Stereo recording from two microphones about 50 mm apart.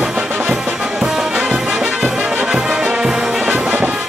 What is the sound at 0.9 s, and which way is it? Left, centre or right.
Music, centre.